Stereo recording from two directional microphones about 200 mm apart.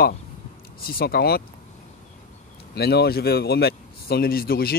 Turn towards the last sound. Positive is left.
turn(degrees=50)  # may be behind; listen again after turning